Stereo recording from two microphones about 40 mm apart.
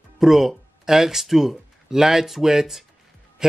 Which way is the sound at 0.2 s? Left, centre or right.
Centre.